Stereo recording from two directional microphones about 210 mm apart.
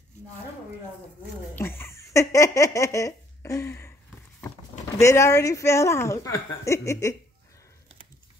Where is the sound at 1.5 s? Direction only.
10° left (ahead or behind).